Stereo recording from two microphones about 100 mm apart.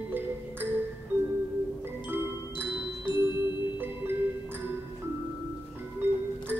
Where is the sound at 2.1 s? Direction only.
20° right (ahead or behind).